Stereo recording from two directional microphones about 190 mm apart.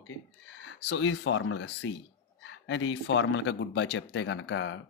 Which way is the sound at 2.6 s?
80° left.